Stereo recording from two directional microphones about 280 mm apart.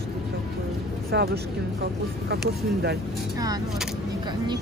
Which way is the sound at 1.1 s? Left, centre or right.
Right.